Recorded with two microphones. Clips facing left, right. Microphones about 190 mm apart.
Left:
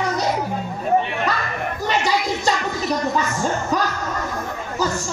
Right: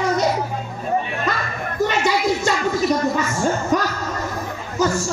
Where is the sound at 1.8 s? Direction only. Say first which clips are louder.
Right 3 dB; 35° left (ahead or behind).